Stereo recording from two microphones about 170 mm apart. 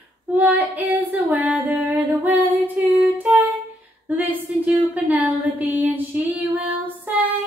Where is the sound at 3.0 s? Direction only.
10° right (ahead or behind).